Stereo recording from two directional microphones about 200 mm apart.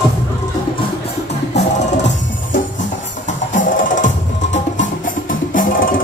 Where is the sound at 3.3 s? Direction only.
40° left (ahead or behind).